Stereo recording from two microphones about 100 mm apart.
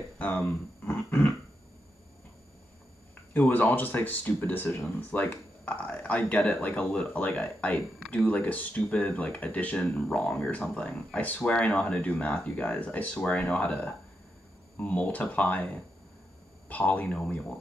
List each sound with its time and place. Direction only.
0.2 s speech: 15° left (ahead or behind)
3.3 s speech: 15° left (ahead or behind)